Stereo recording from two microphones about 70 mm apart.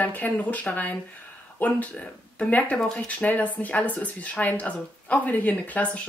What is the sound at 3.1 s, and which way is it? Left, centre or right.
Speech, left.